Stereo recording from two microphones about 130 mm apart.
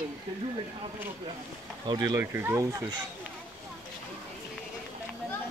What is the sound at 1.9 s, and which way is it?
Speech, 30° right (ahead or behind).